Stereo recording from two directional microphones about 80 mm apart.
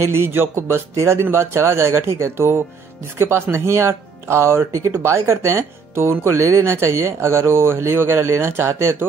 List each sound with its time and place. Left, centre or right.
0.0 s speech: right